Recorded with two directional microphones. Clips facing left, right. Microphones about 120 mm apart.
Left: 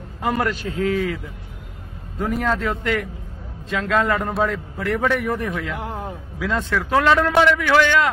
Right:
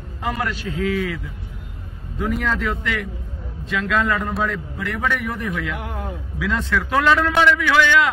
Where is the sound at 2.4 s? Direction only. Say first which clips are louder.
Left 1 dB; 40° left (ahead or behind).